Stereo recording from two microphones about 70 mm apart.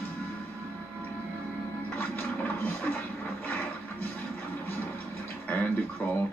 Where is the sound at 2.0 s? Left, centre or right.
Left.